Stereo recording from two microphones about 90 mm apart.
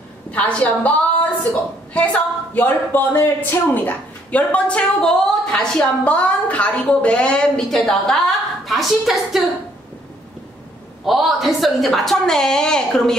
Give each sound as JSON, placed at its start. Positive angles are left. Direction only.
{"t": 0.3, "sound": "speech", "side_deg": 15}
{"t": 2.0, "sound": "speech", "side_deg": 15}
{"t": 6.0, "sound": "speech", "side_deg": 15}
{"t": 11.1, "sound": "a woman's voice", "side_deg": 0}